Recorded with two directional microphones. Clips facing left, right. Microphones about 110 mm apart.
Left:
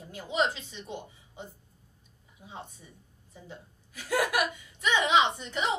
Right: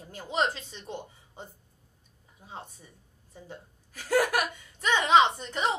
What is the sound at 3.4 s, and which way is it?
A woman's voice, 40° right (ahead or behind).